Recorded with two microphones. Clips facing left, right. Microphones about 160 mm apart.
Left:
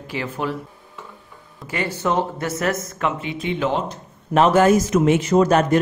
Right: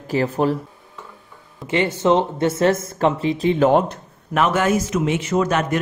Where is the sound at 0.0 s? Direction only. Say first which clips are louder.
Right 7 dB; 40° right (ahead or behind).